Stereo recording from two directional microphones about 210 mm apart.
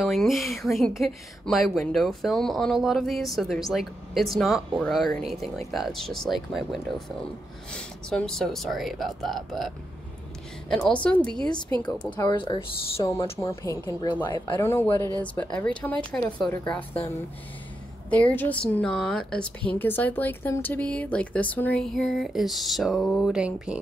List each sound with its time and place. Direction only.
0.0 s speech: centre (ahead or behind)
10.7 s speech: 5° left (ahead or behind)
18.1 s speech: 10° left (ahead or behind)